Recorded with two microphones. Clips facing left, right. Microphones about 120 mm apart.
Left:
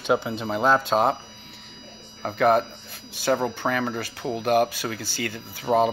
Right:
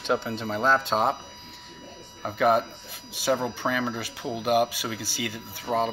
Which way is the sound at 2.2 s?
5° right (ahead or behind).